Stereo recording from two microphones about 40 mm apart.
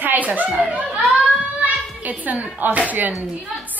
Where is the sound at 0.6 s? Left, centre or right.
Right.